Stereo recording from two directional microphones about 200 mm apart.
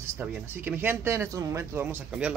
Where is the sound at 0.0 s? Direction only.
10° right (ahead or behind).